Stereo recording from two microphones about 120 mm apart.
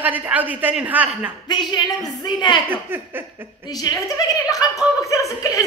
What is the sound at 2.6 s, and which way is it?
Speech, 20° right (ahead or behind).